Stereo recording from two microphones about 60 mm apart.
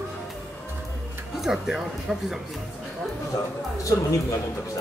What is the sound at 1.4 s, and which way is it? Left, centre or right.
Speech, centre.